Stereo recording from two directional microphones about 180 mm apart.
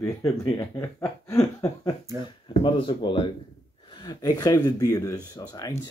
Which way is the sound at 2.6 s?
30° left (ahead or behind).